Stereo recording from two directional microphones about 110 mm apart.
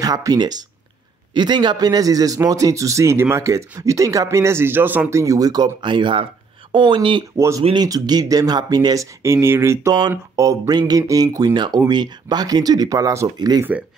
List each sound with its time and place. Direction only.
0.0 s a man's voice: 35° right (ahead or behind); by 5.2 s 15° right (ahead or behind)
5.2 s speech: 35° right (ahead or behind)
7.3 s a man's voice: 25° right (ahead or behind)
7.7 s speech: 40° right (ahead or behind)
13.7 s speech: 15° right (ahead or behind)